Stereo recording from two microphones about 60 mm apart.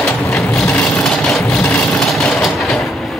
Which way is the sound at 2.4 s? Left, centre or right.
Centre.